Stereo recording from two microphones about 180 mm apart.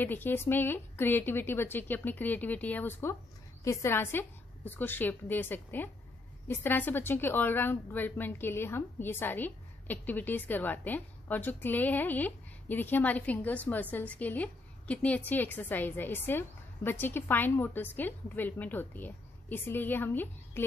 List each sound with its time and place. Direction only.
0.0 s a woman's voice: 10° left (ahead or behind)